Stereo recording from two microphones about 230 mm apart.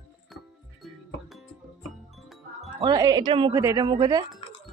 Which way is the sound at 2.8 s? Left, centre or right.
Centre.